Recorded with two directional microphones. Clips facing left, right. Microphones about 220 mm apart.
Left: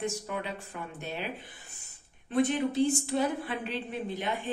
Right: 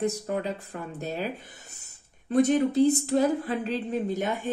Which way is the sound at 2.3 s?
45° right (ahead or behind).